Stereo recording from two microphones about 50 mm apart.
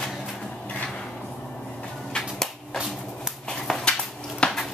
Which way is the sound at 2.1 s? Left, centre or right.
Centre.